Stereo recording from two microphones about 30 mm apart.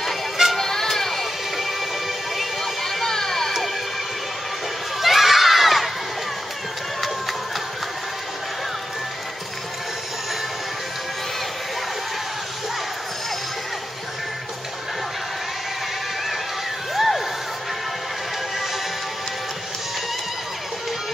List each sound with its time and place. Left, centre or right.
0.6 s music: centre
0.9 s a sound: centre
5.0 s crowd: centre
16.9 s crowd: centre